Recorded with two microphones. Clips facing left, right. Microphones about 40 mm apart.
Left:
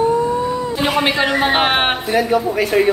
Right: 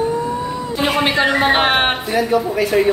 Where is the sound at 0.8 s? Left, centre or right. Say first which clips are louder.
Right 2 dB; centre.